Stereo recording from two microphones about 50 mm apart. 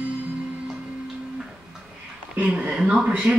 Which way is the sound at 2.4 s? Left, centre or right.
Centre.